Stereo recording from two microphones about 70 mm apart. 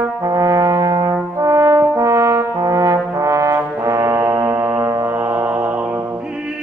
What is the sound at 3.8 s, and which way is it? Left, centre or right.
Foghorn, right.